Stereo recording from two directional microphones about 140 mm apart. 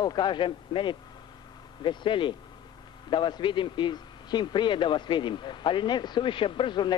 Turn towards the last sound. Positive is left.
turn(degrees=35)  # may be behind; listen again after turning